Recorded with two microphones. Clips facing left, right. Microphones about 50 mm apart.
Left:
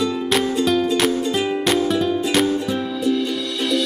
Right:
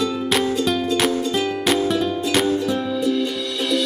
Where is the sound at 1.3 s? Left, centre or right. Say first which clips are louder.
Left 1 dB; centre.